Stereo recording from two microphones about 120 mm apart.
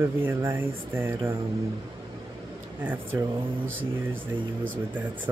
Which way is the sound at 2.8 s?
15° right (ahead or behind).